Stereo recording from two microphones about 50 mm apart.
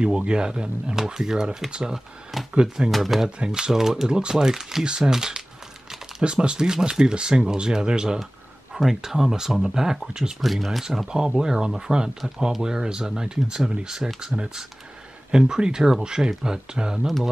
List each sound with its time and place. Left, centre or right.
0.0 s speech: centre
2.9 s speech: centre
3.3 s speech: centre
10.4 s speech: centre
11.1 s speech: centre